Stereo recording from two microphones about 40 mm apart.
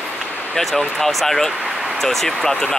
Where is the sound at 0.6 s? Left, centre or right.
Centre.